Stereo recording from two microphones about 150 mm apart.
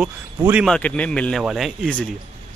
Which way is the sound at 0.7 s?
10° left (ahead or behind).